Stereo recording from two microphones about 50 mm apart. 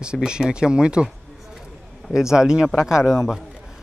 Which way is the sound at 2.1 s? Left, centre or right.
Centre.